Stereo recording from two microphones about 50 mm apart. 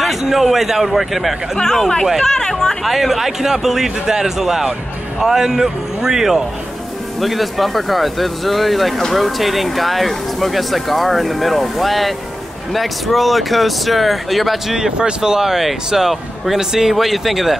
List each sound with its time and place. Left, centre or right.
0.0 s speech: centre
1.6 s speech: centre
2.8 s speech: centre